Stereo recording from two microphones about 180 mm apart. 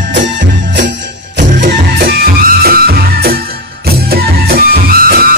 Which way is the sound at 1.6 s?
55° right (ahead or behind).